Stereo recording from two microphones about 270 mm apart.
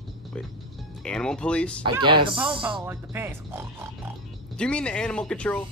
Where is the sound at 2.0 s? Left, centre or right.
Centre.